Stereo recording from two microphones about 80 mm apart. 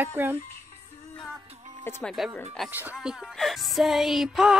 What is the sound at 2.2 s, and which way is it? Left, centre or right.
Speech, centre.